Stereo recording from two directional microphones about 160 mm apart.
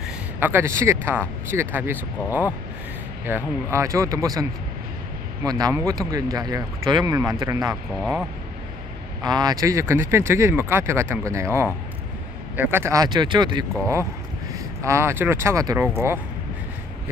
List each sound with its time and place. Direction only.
0.4 s speech: 15° right (ahead or behind)
3.3 s speech: 15° right (ahead or behind)
8.0 s speech: centre (ahead or behind)
9.2 s speech: 25° right (ahead or behind)